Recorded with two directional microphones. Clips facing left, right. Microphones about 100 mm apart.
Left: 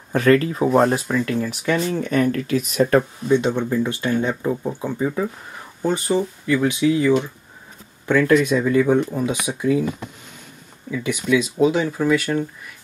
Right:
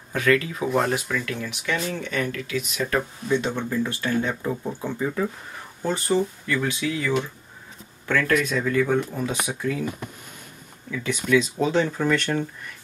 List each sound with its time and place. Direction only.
0.1 s speech: 35° left (ahead or behind)
3.3 s speech: 20° left (ahead or behind)
10.9 s speech: 15° left (ahead or behind)